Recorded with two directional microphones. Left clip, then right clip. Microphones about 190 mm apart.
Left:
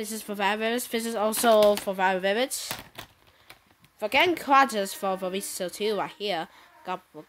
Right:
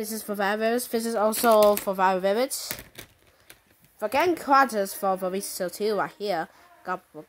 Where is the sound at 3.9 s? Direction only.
Centre (ahead or behind).